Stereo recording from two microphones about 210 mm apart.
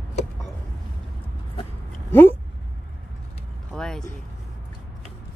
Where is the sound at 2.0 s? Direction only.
10° left (ahead or behind).